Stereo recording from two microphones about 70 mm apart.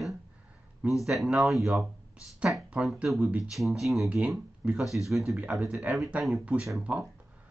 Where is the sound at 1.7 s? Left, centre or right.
Centre.